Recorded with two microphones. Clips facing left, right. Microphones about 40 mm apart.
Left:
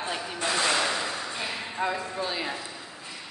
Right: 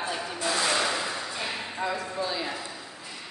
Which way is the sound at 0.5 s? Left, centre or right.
Left.